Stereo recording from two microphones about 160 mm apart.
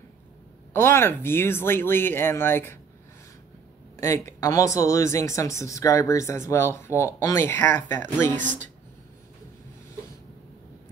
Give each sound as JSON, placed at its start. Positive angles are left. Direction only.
{"t": 0.7, "sound": "speech", "side_deg": 15}
{"t": 3.9, "sound": "speech", "side_deg": 15}
{"t": 8.4, "sound": "speech", "side_deg": -50}